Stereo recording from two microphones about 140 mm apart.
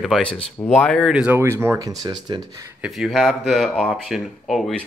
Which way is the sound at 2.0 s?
30° right (ahead or behind).